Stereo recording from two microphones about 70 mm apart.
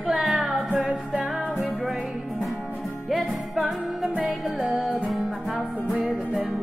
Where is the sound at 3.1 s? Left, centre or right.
Centre.